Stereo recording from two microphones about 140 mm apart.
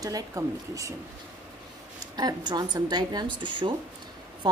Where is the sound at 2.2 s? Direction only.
30° right (ahead or behind).